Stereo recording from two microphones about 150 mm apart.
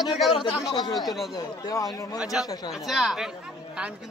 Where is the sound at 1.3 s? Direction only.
25° left (ahead or behind).